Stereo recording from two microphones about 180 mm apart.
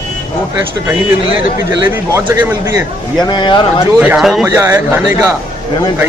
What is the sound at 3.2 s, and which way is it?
Speech, 25° left (ahead or behind).